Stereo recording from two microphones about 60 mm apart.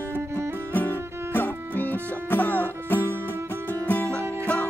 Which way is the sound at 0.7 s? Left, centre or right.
Left.